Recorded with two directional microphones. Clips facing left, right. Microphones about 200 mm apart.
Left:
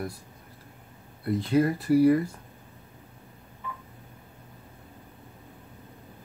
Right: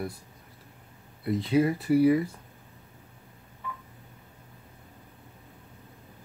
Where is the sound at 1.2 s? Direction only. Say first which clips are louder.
Left 1 dB; centre (ahead or behind).